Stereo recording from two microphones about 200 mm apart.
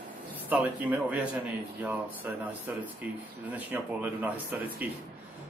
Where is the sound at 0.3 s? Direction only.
10° right (ahead or behind).